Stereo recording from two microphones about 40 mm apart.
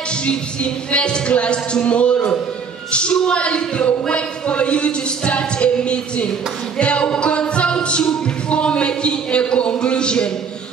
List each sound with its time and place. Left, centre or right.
0.2 s a man's voice: left
6.8 s music: left